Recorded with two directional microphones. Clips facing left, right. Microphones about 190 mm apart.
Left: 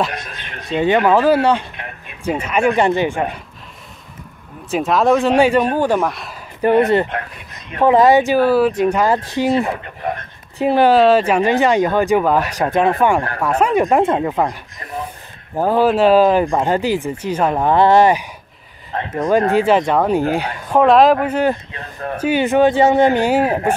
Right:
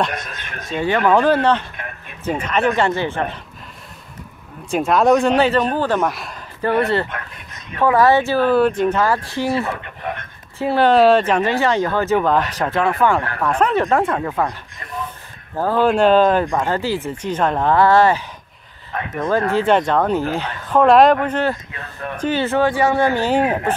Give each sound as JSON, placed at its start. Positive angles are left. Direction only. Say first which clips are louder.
{"t": 0.1, "sound": "a sound", "louder": "even", "side_deg": -45}
{"t": 0.7, "sound": "speech", "louder": "left 3 dB", "side_deg": 20}
{"t": 1.1, "sound": "speech", "louder": "left 2 dB", "side_deg": 5}
{"t": 4.6, "sound": "speech", "louder": "even", "side_deg": 0}
{"t": 6.0, "sound": "speech", "louder": "even", "side_deg": 0}
{"t": 6.6, "sound": "speech", "louder": "left 5 dB", "side_deg": 20}
{"t": 9.8, "sound": "a sound", "louder": "left 4 dB", "side_deg": 40}
{"t": 10.6, "sound": "speech", "louder": "left 3 dB", "side_deg": 15}
{"t": 10.9, "sound": "speech", "louder": "right 1 dB", "side_deg": 5}
{"t": 15.8, "sound": "speech", "louder": "left 1 dB", "side_deg": 5}
{"t": 18.9, "sound": "a sound", "louder": "left 3 dB", "side_deg": 30}
{"t": 19.5, "sound": "speech", "louder": "left 2 dB", "side_deg": 5}
{"t": 20.8, "sound": "speech", "louder": "even", "side_deg": 0}